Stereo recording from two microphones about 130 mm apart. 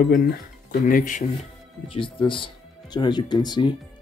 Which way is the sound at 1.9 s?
40° left (ahead or behind).